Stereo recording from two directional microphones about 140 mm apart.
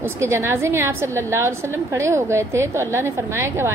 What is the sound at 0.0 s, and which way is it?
A woman's voice, 20° right (ahead or behind).